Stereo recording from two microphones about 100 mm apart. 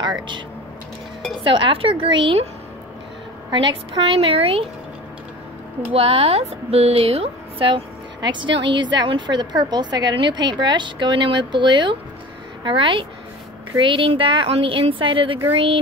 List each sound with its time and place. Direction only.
1.4 s a woman's voice: 60° right (ahead or behind)
3.5 s a woman's voice: 55° right (ahead or behind); by 4.6 s 75° right (ahead or behind)
5.9 s a woman's voice: 90° right; by 15.4 s 60° right (ahead or behind)